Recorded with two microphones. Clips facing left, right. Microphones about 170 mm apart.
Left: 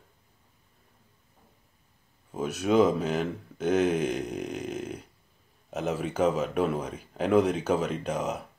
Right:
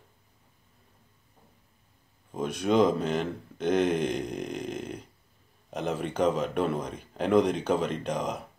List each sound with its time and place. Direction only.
2.3 s speech: 5° left (ahead or behind)